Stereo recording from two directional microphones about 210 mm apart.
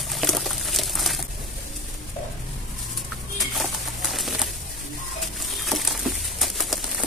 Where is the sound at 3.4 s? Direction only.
Centre (ahead or behind).